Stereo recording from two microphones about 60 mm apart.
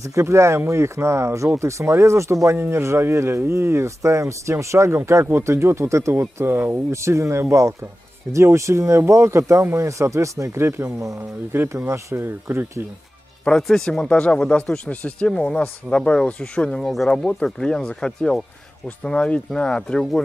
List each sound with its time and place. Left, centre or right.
0.0 s speech: right
11.1 s speech: right
11.7 s speech: right
13.4 s speech: centre
16.7 s speech: centre
17.1 s speech: centre